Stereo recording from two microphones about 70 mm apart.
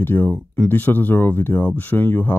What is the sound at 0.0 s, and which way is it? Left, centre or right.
Speech, left.